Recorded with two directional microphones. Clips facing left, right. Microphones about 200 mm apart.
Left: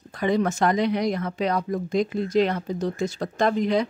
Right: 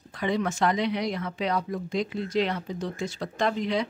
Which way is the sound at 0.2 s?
45° left (ahead or behind).